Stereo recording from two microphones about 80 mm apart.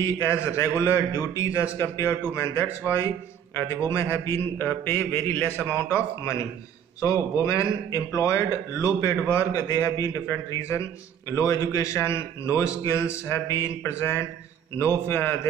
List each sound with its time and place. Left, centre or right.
0.0 s a man's voice: left
5.9 s a man's voice: left